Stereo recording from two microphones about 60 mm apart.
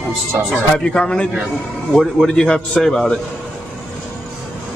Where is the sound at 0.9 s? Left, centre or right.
Centre.